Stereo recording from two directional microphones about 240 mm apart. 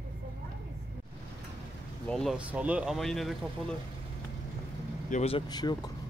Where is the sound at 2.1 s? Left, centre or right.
Centre.